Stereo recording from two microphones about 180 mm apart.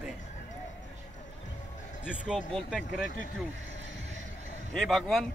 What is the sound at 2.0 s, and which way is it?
Speech, 5° right (ahead or behind).